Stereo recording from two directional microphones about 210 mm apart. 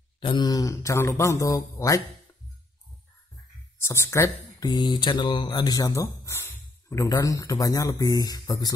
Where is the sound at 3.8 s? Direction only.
10° left (ahead or behind).